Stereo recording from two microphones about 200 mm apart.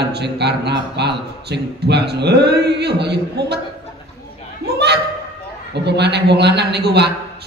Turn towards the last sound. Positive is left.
turn(degrees=-55)  # may be behind; listen again after turning